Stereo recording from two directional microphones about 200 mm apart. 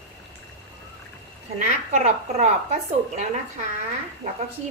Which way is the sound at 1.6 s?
35° right (ahead or behind).